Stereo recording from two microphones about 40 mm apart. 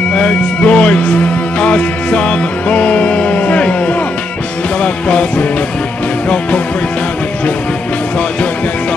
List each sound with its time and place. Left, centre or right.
0.1 s music: left